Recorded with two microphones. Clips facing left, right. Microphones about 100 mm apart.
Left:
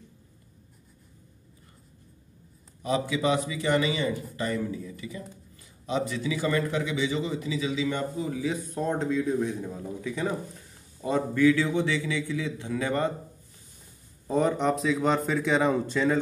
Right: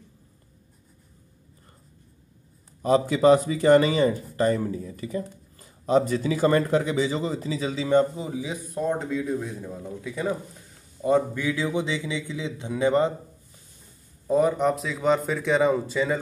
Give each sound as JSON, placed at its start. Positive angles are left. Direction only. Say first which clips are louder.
{"t": 2.8, "sound": "speech", "louder": "right 7 dB", "side_deg": -40}
{"t": 8.2, "sound": "a man's voice", "louder": "left 2 dB", "side_deg": -20}
{"t": 8.7, "sound": "speech", "louder": "right 3 dB", "side_deg": -5}
{"t": 11.1, "sound": "a man's voice", "louder": "even", "side_deg": -15}
{"t": 14.2, "sound": "speech", "louder": "right 3 dB", "side_deg": -5}